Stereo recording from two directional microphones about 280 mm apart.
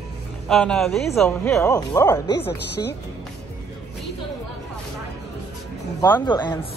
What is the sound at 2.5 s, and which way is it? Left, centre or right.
Speech, left.